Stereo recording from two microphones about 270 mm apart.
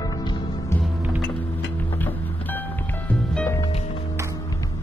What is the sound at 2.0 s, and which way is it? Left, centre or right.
Music, centre.